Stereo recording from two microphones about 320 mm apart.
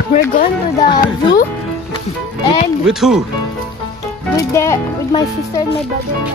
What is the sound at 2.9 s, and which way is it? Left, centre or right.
Speech, centre.